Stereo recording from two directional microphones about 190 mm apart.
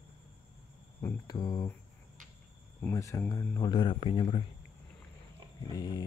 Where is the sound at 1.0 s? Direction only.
20° left (ahead or behind).